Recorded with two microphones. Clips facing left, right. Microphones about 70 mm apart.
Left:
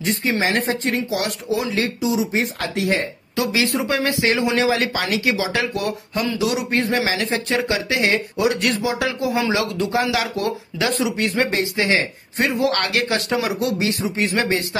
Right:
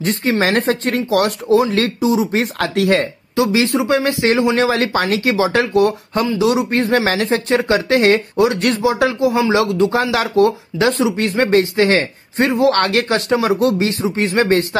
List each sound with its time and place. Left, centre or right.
0.0 s speech: right
1.2 s speech: right
2.3 s speech: right
3.3 s speech: right
4.6 s speech: right
7.7 s speech: right
11.5 s speech: right
12.4 s speech: right
14.4 s speech: right